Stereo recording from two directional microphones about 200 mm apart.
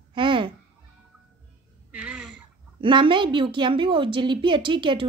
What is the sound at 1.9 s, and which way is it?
Speech, 5° right (ahead or behind).